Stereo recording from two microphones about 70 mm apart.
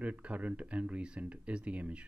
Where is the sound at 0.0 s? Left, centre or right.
Centre.